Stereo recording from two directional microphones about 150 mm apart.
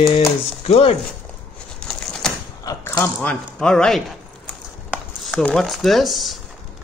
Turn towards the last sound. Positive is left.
turn(degrees=0)  # may be behind; listen again after turning